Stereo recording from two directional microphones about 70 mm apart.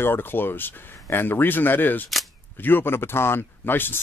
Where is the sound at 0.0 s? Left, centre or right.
Left.